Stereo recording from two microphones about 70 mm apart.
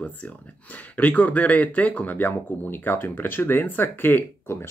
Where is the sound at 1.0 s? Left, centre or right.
Left.